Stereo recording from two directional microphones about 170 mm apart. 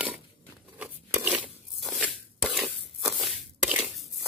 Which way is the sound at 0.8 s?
10° right (ahead or behind).